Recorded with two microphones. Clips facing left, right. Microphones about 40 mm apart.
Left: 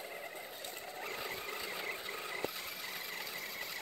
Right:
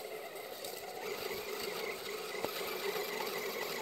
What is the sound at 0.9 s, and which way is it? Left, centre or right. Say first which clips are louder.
Sewing machine: right 1 dB; left.